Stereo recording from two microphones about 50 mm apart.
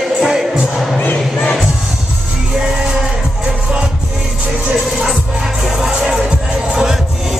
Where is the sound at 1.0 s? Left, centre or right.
Left.